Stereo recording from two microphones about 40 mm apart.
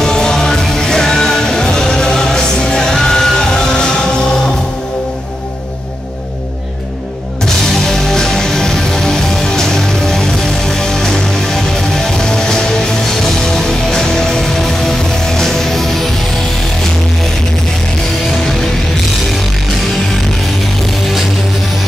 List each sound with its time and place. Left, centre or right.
0.0 s music: centre
7.4 s music: centre